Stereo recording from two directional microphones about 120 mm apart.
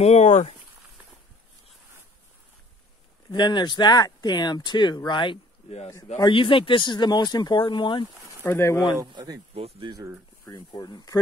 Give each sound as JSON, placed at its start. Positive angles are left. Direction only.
{"t": 0.0, "sound": "speech", "side_deg": 75}
{"t": 3.3, "sound": "speech", "side_deg": 35}
{"t": 8.3, "sound": "a sound", "side_deg": 25}
{"t": 9.8, "sound": "speech", "side_deg": -40}
{"t": 10.4, "sound": "speech", "side_deg": 30}